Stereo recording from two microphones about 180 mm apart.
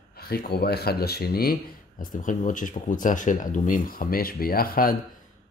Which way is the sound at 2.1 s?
45° left (ahead or behind).